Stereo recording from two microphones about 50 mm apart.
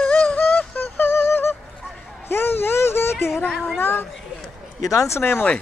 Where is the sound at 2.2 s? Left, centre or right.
Left.